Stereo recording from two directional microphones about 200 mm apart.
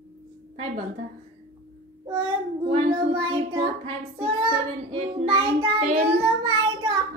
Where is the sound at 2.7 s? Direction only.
25° right (ahead or behind).